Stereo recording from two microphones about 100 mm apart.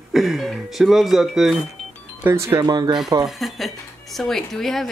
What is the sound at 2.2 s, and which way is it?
Speech, 25° right (ahead or behind).